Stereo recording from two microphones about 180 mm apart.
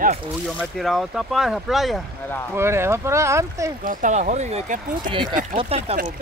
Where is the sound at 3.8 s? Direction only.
50° right (ahead or behind).